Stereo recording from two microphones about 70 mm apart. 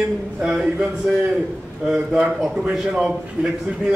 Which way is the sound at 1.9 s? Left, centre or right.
Centre.